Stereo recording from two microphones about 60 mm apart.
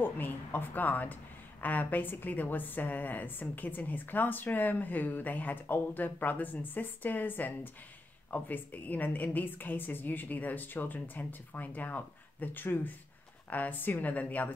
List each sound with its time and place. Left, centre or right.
0.0 s a woman's voice: left